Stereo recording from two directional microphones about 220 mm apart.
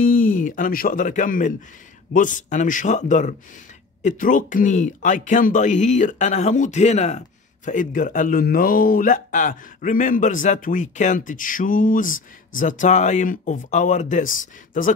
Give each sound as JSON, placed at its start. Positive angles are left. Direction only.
{"t": 0.0, "sound": "speech", "side_deg": 40}